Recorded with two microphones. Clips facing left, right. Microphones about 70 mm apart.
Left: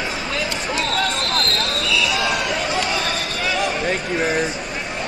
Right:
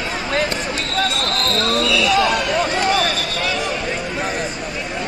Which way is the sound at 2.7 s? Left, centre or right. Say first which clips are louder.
Right 4 dB; right.